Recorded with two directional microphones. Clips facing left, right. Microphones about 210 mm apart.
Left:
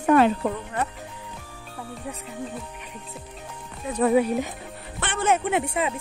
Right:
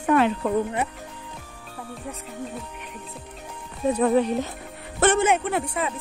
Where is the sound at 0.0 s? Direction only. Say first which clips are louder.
Left 2 dB; 40° left (ahead or behind).